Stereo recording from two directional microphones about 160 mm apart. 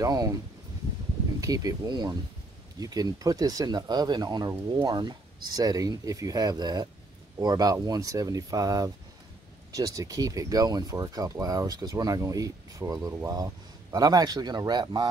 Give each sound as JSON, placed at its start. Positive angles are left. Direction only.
{"t": 0.0, "sound": "speech", "side_deg": -25}
{"t": 1.4, "sound": "speech", "side_deg": -20}